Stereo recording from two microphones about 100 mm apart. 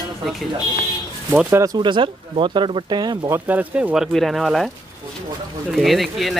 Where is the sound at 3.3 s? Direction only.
15° right (ahead or behind).